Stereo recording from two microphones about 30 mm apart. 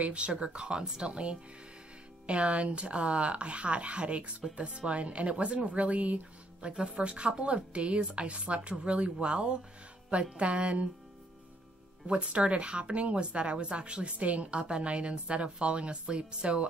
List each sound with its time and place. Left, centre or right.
0.0 s speech: right
6.6 s speech: right
6.9 s speech: right
12.2 s speech: right
14.1 s speech: right
14.6 s speech: right